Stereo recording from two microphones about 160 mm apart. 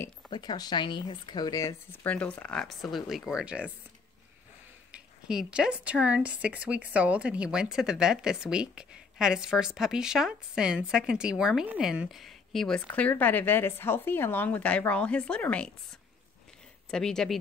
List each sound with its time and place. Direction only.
0.3 s speech: 25° left (ahead or behind)
2.0 s a woman's voice: 10° left (ahead or behind); by 3.7 s 5° right (ahead or behind)
4.9 s a woman's voice: 5° right (ahead or behind)
16.9 s a woman's voice: 5° left (ahead or behind)